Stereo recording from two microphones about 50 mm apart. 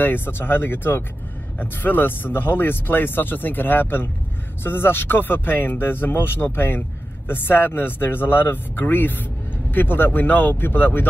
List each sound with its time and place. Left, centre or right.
0.0 s speech: left